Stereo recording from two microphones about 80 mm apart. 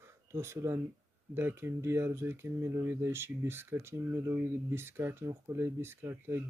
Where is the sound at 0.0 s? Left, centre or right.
Right.